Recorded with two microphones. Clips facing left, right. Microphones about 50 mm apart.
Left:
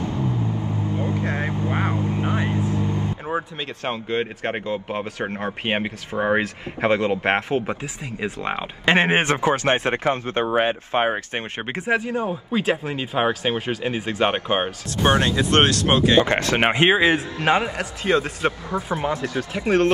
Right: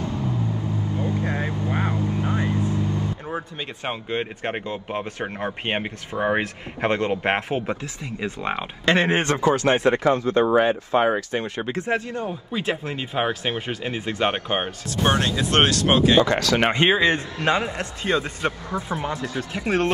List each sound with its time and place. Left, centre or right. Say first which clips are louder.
0.0 s vehicle: left 2 dB; left
3.8 s speech: left 3 dB; centre
8.8 s speech: left 2 dB; left
11.8 s speech: left 5 dB; centre
16.2 s speech: even; left
16.8 s speech: left 2 dB; centre
17.7 s speech: left 3 dB; centre